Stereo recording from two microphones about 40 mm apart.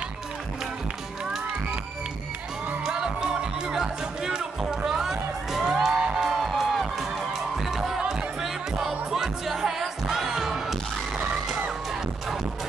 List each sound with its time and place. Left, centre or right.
2.8 s music: centre
4.8 s run: centre
5.6 s music: centre
6.3 s music: centre